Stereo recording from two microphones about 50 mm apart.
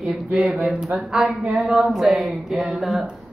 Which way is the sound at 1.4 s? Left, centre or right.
Right.